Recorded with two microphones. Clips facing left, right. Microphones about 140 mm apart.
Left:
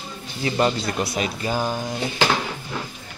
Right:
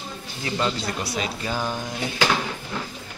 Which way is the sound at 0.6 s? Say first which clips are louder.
Left 5 dB; 20° left (ahead or behind).